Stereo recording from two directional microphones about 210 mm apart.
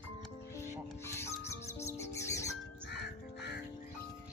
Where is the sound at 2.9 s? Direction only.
55° left (ahead or behind).